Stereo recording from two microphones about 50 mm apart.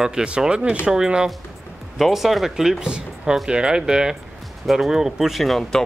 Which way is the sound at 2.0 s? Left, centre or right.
Centre.